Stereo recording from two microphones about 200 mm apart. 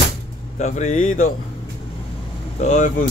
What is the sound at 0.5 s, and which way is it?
Speech, 35° left (ahead or behind).